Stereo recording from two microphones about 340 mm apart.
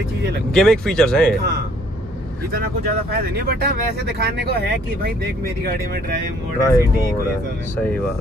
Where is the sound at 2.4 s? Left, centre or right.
Right.